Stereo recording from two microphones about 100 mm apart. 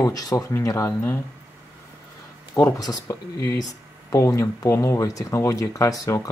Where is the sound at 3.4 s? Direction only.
35° left (ahead or behind).